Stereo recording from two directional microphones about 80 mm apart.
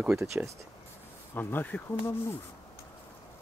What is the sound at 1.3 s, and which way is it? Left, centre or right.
Speech, left.